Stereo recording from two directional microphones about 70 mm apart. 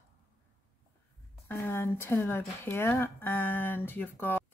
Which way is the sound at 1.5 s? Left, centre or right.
Left.